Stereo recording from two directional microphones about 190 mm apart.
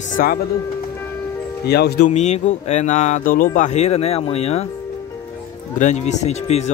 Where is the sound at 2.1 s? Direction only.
40° left (ahead or behind).